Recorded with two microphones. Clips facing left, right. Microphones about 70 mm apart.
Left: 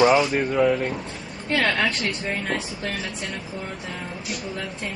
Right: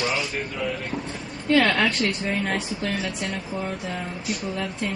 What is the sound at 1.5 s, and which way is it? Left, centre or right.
Speech, centre.